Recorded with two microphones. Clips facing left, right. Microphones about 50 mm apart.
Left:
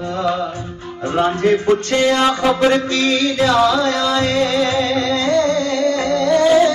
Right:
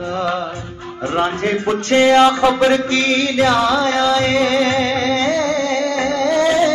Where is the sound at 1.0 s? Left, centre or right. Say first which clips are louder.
Left 1 dB; right.